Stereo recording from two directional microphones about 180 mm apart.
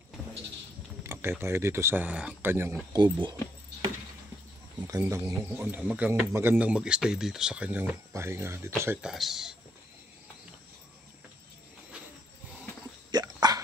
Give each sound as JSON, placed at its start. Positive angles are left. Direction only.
{"t": 1.0, "sound": "a sound", "side_deg": -15}
{"t": 1.4, "sound": "speech", "side_deg": -15}
{"t": 4.7, "sound": "speech", "side_deg": -20}
{"t": 9.0, "sound": "speech", "side_deg": 0}
{"t": 13.1, "sound": "dog", "side_deg": -20}